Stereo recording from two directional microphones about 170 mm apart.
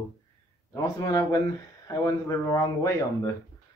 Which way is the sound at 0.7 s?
20° left (ahead or behind).